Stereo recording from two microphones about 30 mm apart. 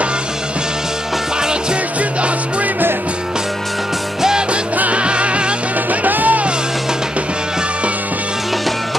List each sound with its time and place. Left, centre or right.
1.4 s music: right
4.9 s music: right
5.9 s music: right